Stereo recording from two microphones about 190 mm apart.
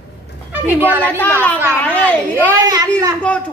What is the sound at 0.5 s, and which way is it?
Speech, 10° right (ahead or behind).